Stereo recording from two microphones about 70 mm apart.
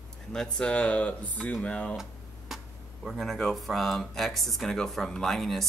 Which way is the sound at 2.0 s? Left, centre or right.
Centre.